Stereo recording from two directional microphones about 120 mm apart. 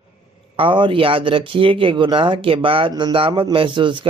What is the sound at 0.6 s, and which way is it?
Speech, 45° right (ahead or behind).